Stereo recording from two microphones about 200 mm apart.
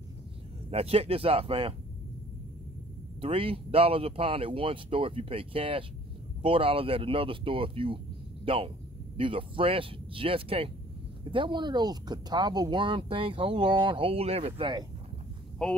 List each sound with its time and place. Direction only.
0.7 s speech: 30° right (ahead or behind)
3.2 s speech: 30° right (ahead or behind)
15.6 s speech: 5° left (ahead or behind)